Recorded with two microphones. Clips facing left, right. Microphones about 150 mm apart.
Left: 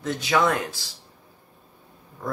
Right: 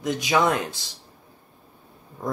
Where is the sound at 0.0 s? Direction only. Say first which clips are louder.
Right 1 dB; 15° right (ahead or behind).